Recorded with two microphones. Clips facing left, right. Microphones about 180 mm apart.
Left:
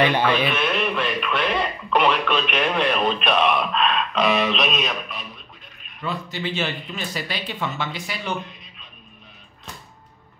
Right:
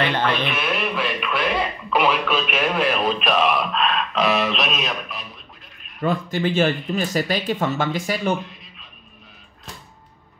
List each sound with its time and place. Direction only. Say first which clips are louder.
0.0 s a man's voice: left 2 dB; 10° left (ahead or behind)
0.5 s speech: left 1 dB; 5° right (ahead or behind)
5.9 s speech: right 7 dB; 50° right (ahead or behind)